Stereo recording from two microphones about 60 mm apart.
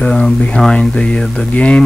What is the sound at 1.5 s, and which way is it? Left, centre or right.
Speech, left.